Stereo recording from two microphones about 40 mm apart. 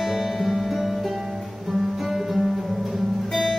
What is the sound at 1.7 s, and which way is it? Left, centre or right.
Guitar, centre.